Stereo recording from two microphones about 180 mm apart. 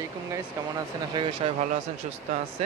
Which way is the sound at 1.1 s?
30° right (ahead or behind).